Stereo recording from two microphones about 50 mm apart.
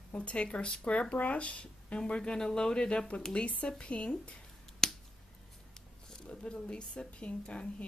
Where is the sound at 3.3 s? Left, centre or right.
Left.